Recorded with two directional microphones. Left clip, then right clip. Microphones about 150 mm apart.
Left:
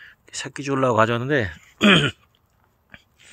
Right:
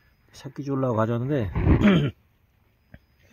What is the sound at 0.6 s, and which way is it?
Speech, 20° left (ahead or behind).